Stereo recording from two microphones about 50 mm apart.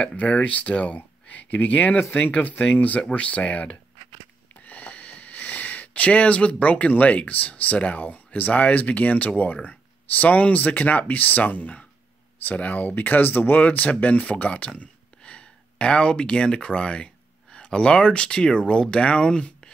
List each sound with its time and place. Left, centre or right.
0.0 s speech: left
4.6 s sniff: left
8.0 s speech: left; by 19.7 s centre